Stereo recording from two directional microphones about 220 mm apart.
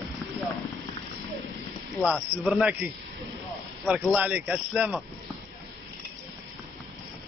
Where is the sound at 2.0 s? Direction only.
5° right (ahead or behind).